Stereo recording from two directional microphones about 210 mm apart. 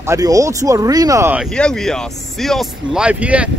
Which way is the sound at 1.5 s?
5° left (ahead or behind).